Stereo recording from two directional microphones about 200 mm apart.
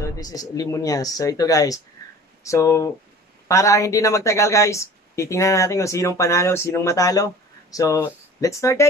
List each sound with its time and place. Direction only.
0.0 s speech: 20° left (ahead or behind)